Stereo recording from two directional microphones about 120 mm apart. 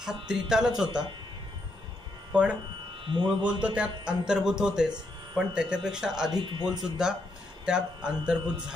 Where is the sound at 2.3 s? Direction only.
10° right (ahead or behind).